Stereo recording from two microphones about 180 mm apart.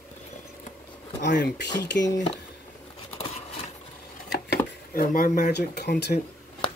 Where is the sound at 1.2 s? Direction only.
70° left (ahead or behind).